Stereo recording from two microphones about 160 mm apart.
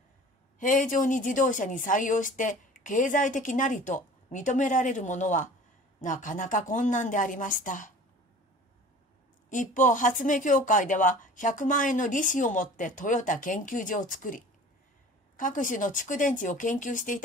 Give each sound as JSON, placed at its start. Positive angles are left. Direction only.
{"t": 0.6, "sound": "a woman's voice", "side_deg": 55}
{"t": 9.5, "sound": "a woman's voice", "side_deg": 55}